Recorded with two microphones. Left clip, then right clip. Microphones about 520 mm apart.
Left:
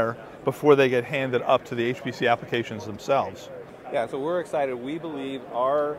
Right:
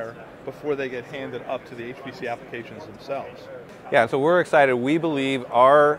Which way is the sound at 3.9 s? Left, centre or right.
Right.